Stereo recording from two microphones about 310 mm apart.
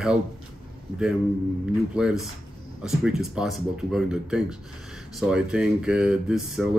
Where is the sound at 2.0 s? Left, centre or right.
Centre.